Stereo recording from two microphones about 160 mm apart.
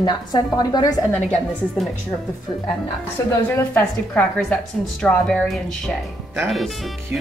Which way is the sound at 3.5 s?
15° left (ahead or behind).